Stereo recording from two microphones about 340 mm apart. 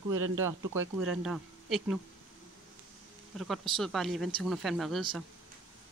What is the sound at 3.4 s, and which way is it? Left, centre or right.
Speech, centre.